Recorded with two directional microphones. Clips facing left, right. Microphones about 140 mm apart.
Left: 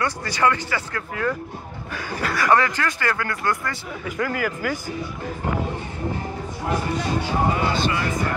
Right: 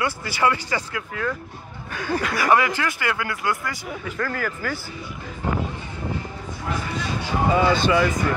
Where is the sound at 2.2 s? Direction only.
5° right (ahead or behind).